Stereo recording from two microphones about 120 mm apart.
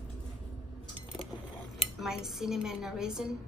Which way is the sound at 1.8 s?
5° right (ahead or behind).